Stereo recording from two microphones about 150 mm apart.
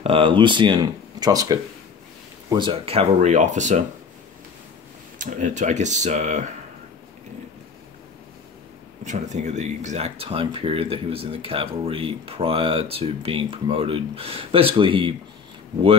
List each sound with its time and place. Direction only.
0.0 s speech: 35° right (ahead or behind)
2.5 s speech: 35° right (ahead or behind); by 3.8 s 55° right (ahead or behind)
5.2 s speech: 55° right (ahead or behind)
9.0 s speech: 50° right (ahead or behind); by 15.1 s 35° right (ahead or behind)